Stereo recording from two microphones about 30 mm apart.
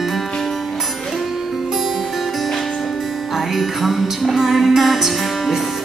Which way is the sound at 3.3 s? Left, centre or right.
Centre.